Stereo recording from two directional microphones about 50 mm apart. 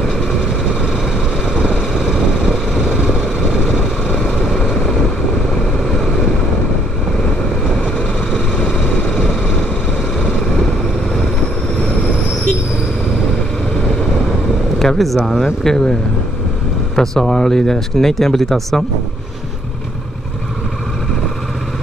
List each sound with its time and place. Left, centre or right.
1.5 s vehicle: centre
2.5 s vehicle: centre
4.6 s vehicle: centre
14.8 s vehicle: centre
15.6 s speech: centre